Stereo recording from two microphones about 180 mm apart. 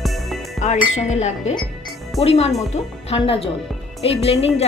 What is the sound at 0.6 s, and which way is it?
A woman's voice, 40° left (ahead or behind).